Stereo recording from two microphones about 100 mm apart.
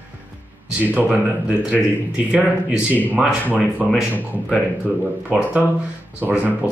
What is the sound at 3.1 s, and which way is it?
Speech, 15° right (ahead or behind).